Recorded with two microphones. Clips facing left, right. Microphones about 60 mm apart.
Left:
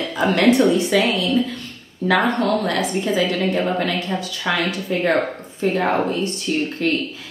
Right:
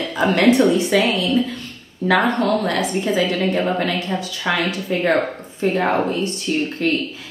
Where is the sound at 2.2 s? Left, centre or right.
Right.